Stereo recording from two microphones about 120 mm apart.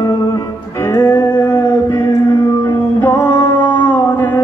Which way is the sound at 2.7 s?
15° left (ahead or behind).